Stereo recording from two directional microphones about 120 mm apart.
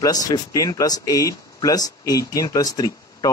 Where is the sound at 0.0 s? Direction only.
30° left (ahead or behind).